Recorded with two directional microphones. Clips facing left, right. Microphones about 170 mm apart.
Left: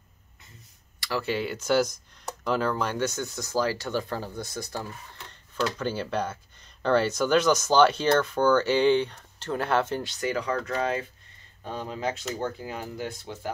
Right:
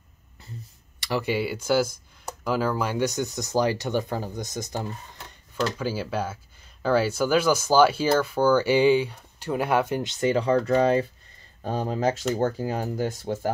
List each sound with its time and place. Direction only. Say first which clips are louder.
0.9 s speech: right 3 dB; 20° right (ahead or behind)
5.3 s speech: right 1 dB; 5° right (ahead or behind)
10.1 s speech: right 8 dB; 25° right (ahead or behind); by 13.5 s 45° right (ahead or behind)